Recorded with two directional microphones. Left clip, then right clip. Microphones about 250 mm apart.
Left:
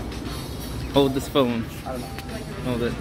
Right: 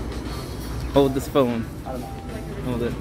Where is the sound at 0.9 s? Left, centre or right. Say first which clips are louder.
Right 1 dB; centre.